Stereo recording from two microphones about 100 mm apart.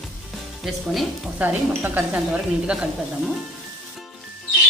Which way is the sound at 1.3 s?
15° right (ahead or behind).